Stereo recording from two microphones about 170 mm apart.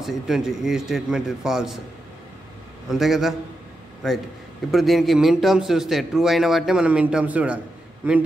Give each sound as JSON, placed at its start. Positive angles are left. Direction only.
{"t": 0.0, "sound": "a man's voice", "side_deg": 0}
{"t": 2.9, "sound": "a man's voice", "side_deg": 0}